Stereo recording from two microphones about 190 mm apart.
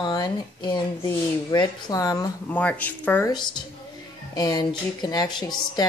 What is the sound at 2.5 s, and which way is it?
Speech, 10° left (ahead or behind).